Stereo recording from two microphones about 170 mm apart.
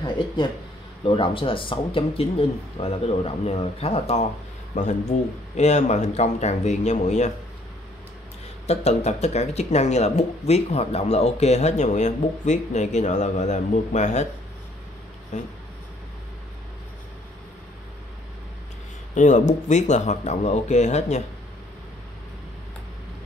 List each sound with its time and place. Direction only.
1.0 s speech: 30° left (ahead or behind)
8.6 s speech: 40° left (ahead or behind)
15.3 s speech: 45° left (ahead or behind)
19.1 s speech: 45° left (ahead or behind)